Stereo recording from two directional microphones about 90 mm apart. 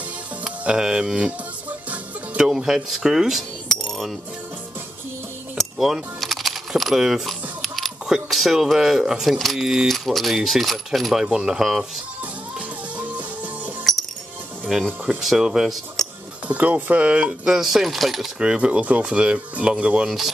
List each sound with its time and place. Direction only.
0.4 s music: 10° right (ahead or behind)
2.4 s cutlery: 5° right (ahead or behind)
5.6 s speech: 5° right (ahead or behind)
12.2 s music: 15° right (ahead or behind)
14.7 s speech: 5° right (ahead or behind)